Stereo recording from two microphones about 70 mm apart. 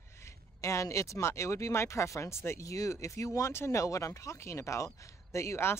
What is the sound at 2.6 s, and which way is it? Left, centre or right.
Speech, left.